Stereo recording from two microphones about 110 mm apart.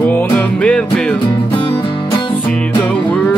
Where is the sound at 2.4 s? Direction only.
10° left (ahead or behind).